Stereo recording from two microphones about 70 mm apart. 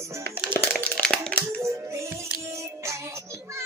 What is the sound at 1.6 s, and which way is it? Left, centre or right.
Music, right.